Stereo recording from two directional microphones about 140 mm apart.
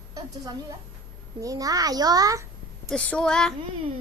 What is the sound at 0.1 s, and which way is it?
A woman's voice, 25° right (ahead or behind).